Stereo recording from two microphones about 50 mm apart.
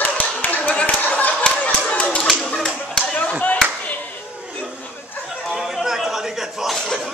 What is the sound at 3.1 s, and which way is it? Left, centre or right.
Clapping, left.